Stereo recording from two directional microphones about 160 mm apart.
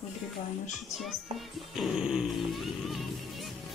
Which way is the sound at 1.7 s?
5° right (ahead or behind).